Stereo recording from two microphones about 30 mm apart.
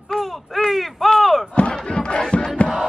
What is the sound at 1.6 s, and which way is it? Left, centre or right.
Crowd, left.